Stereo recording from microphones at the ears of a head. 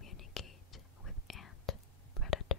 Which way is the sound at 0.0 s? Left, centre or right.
Left.